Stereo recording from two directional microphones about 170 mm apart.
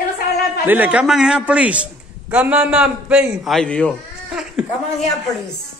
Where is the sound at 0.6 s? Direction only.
10° right (ahead or behind).